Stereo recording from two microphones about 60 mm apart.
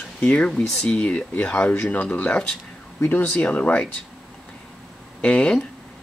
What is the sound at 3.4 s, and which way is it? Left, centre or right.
Speech, left.